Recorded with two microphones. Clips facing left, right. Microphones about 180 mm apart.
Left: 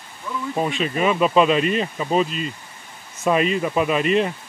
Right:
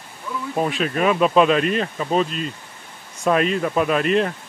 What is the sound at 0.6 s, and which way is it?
Speech, centre (ahead or behind).